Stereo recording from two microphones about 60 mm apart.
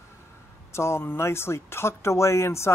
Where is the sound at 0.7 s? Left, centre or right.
Left.